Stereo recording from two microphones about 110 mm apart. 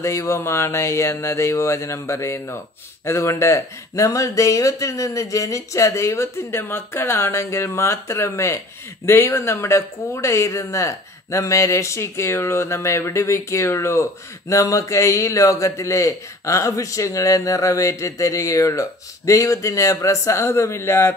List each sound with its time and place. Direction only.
0.0 s a man's voice: 25° left (ahead or behind)